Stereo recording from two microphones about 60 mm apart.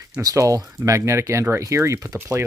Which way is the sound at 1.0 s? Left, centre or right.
Right.